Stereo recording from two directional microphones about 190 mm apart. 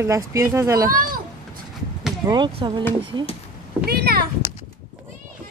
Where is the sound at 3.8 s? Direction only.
55° right (ahead or behind).